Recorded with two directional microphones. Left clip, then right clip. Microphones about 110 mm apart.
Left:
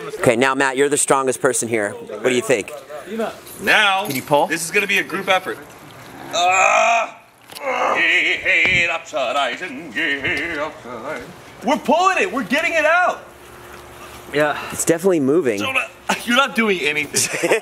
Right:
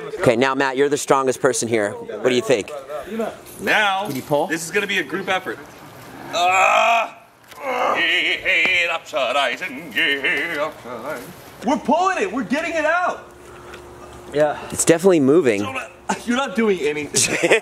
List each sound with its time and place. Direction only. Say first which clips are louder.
0.2 s speech: left 1 dB; centre (ahead or behind)
3.6 s a man's voice: left 3 dB; 15° left (ahead or behind)
6.3 s speech: left 1 dB; 15° right (ahead or behind)
11.6 s a man's voice: left 2 dB; 15° left (ahead or behind)
14.3 s speech: even; 45° left (ahead or behind)
14.8 s speech: right 3 dB; 20° right (ahead or behind)
15.6 s a man's voice: left 6 dB; 15° left (ahead or behind)
17.1 s speech: right 2 dB; 15° right (ahead or behind)